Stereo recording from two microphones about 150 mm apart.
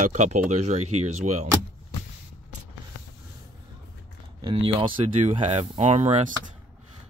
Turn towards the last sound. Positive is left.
turn(degrees=-50)  # may be behind; listen again after turning